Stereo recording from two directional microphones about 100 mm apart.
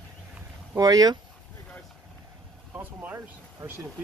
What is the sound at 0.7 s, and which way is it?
Speech, 40° right (ahead or behind).